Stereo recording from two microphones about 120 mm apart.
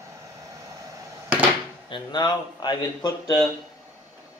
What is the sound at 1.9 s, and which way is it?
A man's voice, 40° left (ahead or behind).